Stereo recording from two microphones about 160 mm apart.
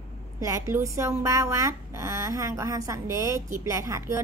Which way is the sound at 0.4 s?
20° right (ahead or behind).